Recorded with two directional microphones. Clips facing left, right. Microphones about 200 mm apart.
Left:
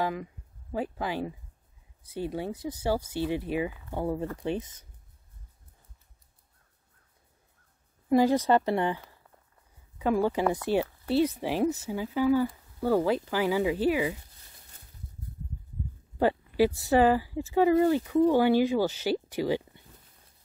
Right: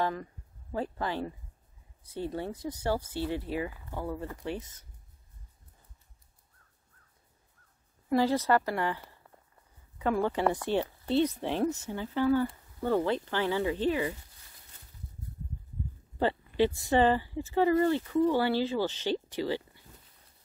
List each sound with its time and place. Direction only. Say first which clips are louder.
0.0 s speech: left 1 dB; 10° left (ahead or behind)
8.1 s speech: left 3 dB; 15° left (ahead or behind)
9.9 s a woman's voice: left 3 dB; 10° left (ahead or behind)
16.2 s speech: left 3 dB; 10° left (ahead or behind)